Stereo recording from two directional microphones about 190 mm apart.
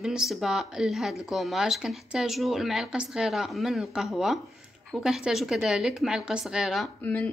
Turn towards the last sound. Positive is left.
turn(degrees=10)  # may be behind; listen again after turning